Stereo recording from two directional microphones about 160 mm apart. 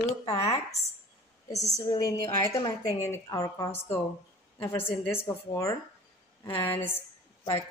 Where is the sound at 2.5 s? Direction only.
35° left (ahead or behind).